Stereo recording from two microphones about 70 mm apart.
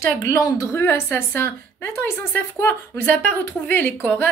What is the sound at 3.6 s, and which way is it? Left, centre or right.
Speech, left.